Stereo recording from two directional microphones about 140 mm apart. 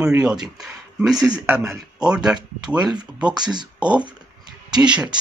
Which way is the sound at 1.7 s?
5° right (ahead or behind).